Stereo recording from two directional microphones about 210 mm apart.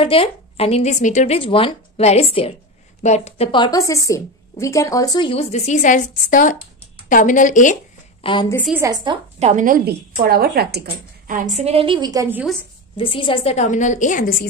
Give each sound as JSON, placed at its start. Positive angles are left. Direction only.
{"t": 0.0, "sound": "a woman's voice", "side_deg": 25}
{"t": 8.2, "sound": "a woman's voice", "side_deg": 20}
{"t": 8.6, "sound": "speech", "side_deg": -10}
{"t": 9.5, "sound": "a woman's voice", "side_deg": -40}
{"t": 11.2, "sound": "a woman's voice", "side_deg": -35}
{"t": 12.9, "sound": "a woman's voice", "side_deg": 25}